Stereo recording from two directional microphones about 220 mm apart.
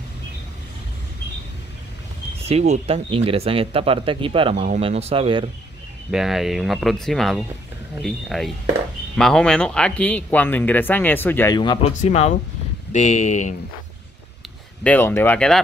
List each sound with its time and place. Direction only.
2.4 s speech: 30° right (ahead or behind)
6.1 s speech: centre (ahead or behind); by 11.9 s 20° left (ahead or behind)
12.0 s speech: 30° left (ahead or behind)
14.8 s speech: 10° left (ahead or behind)